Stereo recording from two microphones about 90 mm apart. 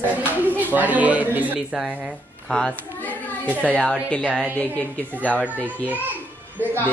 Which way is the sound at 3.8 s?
10° left (ahead or behind).